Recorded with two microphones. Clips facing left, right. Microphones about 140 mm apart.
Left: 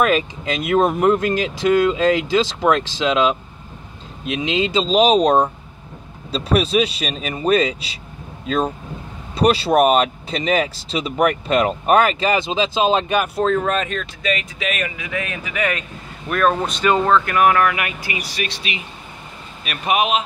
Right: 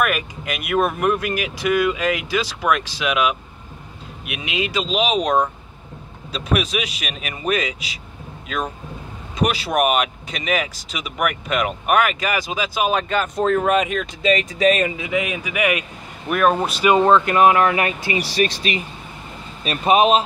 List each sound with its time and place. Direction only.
0.0 s speech: 25° left (ahead or behind)
13.4 s speech: 5° right (ahead or behind)
14.2 s speech: 35° right (ahead or behind)
15.0 s speech: 15° right (ahead or behind); by 18.8 s 40° right (ahead or behind)
19.6 s speech: 30° right (ahead or behind)